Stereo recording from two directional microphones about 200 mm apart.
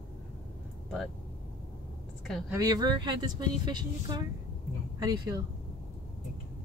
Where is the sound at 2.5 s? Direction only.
20° right (ahead or behind).